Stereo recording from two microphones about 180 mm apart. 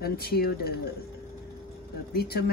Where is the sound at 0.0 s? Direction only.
60° left (ahead or behind).